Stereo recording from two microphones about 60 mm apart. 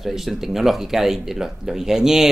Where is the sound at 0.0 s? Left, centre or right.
Centre.